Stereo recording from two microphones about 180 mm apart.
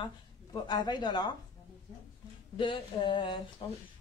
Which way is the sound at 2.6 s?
30° left (ahead or behind).